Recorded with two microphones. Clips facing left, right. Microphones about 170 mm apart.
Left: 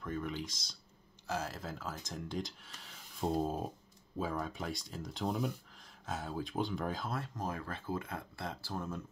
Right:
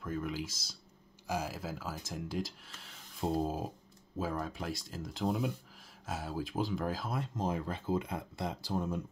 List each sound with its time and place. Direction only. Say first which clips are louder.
0.0 s speech: right 2 dB; 5° right (ahead or behind)
7.2 s speech: right 4 dB; 20° right (ahead or behind)